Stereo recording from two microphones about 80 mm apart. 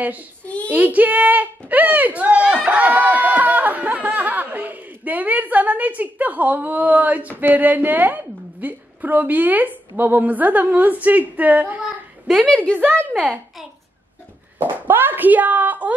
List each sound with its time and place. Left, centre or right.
0.7 s a sound: right
7.3 s a woman's voice: right
12.4 s a woman's voice: centre
12.7 s a woman's voice: right
14.6 s a woman's voice: right